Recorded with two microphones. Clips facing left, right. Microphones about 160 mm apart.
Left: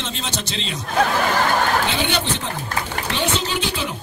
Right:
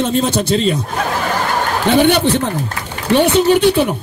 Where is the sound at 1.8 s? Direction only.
60° right (ahead or behind).